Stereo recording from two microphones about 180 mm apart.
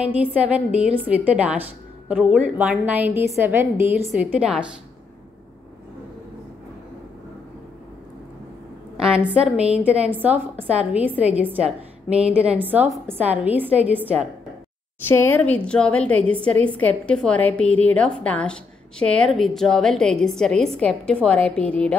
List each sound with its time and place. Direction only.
0.0 s a woman's voice: 10° right (ahead or behind)
8.9 s a woman's voice: 5° right (ahead or behind)
15.0 s a woman's voice: 10° left (ahead or behind)